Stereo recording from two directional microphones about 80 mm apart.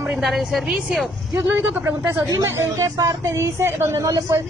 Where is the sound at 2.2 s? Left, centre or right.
Right.